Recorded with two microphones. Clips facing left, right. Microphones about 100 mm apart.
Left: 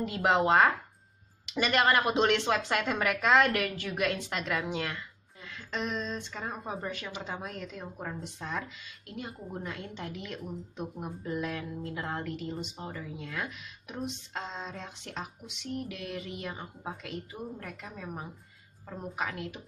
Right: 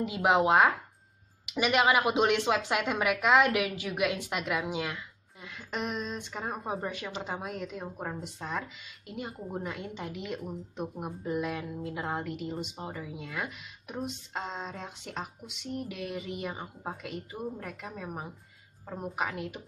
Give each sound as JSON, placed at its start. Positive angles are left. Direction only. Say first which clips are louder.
{"t": 0.0, "sound": "a woman's voice", "louder": "right 1 dB", "side_deg": -10}
{"t": 7.8, "sound": "a woman's voice", "louder": "right 2 dB", "side_deg": -20}
{"t": 8.2, "sound": "a woman's voice", "louder": "right 1 dB", "side_deg": -5}